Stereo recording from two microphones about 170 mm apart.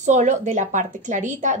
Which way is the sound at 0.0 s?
45° right (ahead or behind).